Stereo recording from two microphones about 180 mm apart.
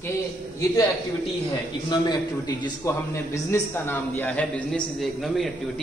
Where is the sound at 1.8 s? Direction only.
20° left (ahead or behind).